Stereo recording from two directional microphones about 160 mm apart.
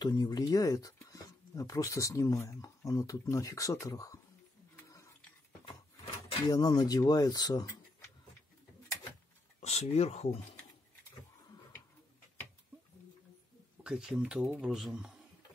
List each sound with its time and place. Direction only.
0.0 s speech: 25° left (ahead or behind)
4.7 s a sound: 20° left (ahead or behind)
6.4 s speech: 25° left (ahead or behind)
9.6 s speech: 40° left (ahead or behind)
13.8 s speech: 5° right (ahead or behind)